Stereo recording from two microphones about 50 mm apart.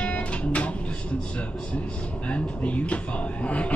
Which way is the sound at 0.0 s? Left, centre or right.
Left.